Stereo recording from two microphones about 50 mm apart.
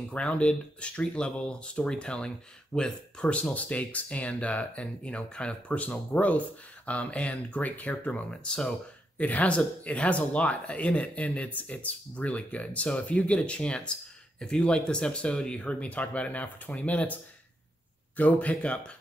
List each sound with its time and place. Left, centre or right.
0.1 s speech: left
9.2 s speech: left
18.5 s speech: left